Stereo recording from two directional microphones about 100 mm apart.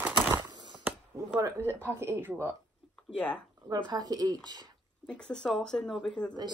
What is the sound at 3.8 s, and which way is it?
Speech, 40° right (ahead or behind).